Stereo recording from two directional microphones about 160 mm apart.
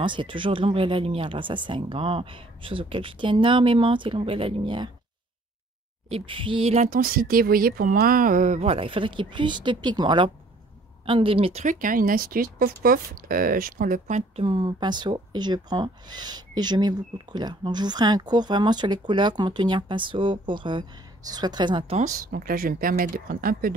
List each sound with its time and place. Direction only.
0.0 s speech: 30° right (ahead or behind)
6.0 s speech: 35° right (ahead or behind)
6.9 s speech: 65° right (ahead or behind); by 11.6 s 35° right (ahead or behind)
11.6 s speech: 55° right (ahead or behind)
14.4 s speech: 30° right (ahead or behind)
21.9 s speech: 55° right (ahead or behind)